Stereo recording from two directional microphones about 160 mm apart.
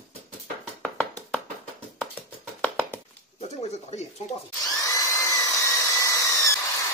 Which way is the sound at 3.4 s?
40° left (ahead or behind).